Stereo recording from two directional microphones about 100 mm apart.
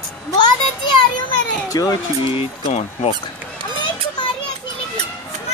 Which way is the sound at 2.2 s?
60° left (ahead or behind).